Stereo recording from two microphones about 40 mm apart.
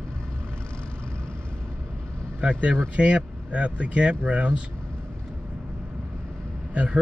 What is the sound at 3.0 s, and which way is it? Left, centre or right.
Speech, right.